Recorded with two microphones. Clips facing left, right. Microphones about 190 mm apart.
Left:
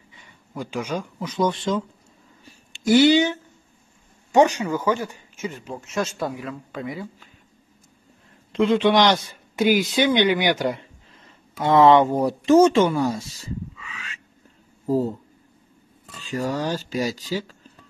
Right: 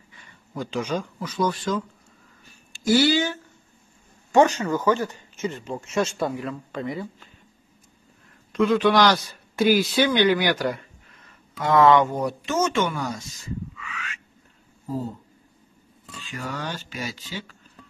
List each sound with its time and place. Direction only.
0.1 s a sound: 15° left (ahead or behind)
1.2 s a man's voice: 25° left (ahead or behind); by 7.1 s 5° left (ahead or behind)
8.5 s a man's voice: 25° left (ahead or behind)
16.2 s speech: 35° left (ahead or behind)